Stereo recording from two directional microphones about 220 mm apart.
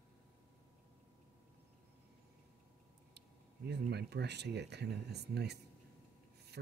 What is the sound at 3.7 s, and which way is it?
Speech, 50° right (ahead or behind).